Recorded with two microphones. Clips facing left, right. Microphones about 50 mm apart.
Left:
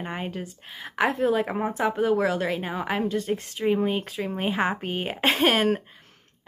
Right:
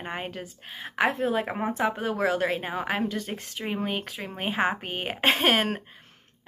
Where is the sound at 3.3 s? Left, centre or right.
Right.